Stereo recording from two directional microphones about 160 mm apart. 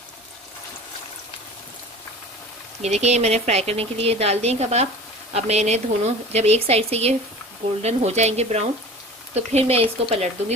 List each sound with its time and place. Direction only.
2.8 s a woman's voice: 45° right (ahead or behind)